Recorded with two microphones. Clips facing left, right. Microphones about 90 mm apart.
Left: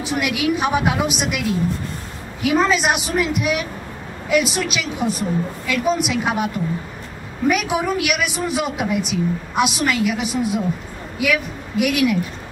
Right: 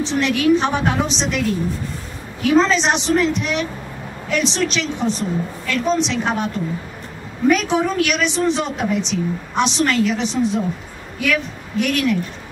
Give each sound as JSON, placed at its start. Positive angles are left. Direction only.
{"t": 0.0, "sound": "a woman's voice", "side_deg": 10}
{"t": 2.4, "sound": "a woman's voice", "side_deg": 10}